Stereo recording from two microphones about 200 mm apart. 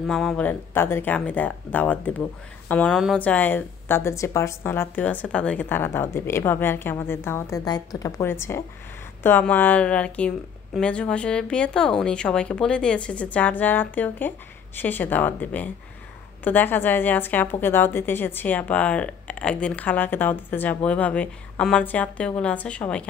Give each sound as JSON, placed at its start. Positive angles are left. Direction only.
{"t": 0.0, "sound": "a woman's voice", "side_deg": 0}